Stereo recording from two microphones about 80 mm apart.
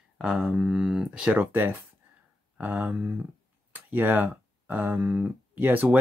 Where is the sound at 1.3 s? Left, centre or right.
Right.